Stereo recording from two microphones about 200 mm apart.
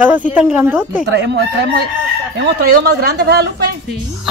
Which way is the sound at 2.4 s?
55° right (ahead or behind).